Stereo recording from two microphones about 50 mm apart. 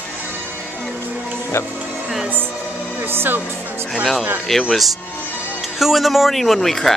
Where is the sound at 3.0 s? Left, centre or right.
Right.